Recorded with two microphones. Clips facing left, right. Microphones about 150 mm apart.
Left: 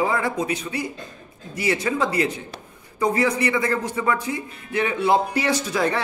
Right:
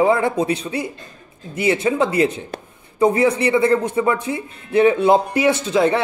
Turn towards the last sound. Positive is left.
turn(degrees=-25)  # may be behind; listen again after turning